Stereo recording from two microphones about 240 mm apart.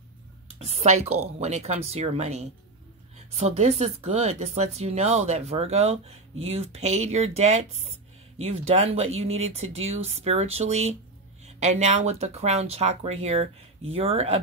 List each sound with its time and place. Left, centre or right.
0.6 s speech: right